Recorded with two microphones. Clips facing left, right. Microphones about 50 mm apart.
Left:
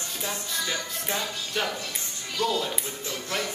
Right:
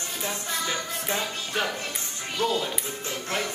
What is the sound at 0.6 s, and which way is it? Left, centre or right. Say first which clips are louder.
Music: right 1 dB; centre.